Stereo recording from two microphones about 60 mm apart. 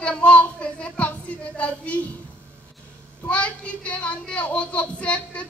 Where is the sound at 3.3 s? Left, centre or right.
Left.